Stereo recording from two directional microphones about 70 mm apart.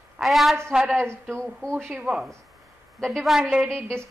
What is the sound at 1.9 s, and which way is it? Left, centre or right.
Speech, centre.